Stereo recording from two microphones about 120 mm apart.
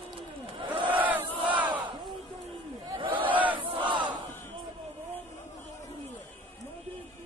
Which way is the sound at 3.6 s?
45° right (ahead or behind).